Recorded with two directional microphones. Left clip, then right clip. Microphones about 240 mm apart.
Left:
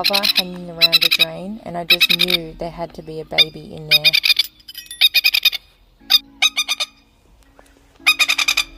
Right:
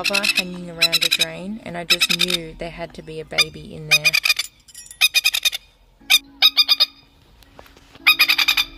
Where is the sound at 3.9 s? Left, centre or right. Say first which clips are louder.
Left 3 dB; right.